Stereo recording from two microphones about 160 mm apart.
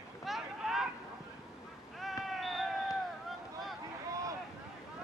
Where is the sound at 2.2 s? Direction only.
Centre (ahead or behind).